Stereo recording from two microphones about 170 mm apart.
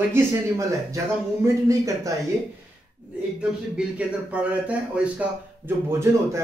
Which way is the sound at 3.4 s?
5° right (ahead or behind).